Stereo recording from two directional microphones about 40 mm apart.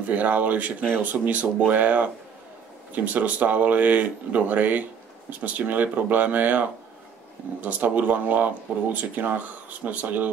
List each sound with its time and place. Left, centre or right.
0.1 s speech: right